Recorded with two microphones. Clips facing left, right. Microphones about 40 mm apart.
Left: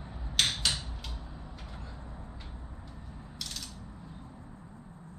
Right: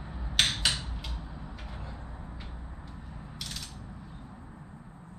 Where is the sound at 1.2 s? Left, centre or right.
Centre.